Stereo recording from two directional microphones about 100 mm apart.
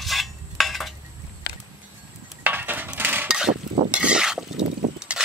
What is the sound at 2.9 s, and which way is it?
Coin, 20° right (ahead or behind).